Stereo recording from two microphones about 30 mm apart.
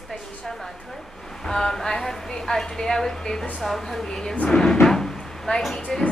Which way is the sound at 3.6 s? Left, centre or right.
Centre.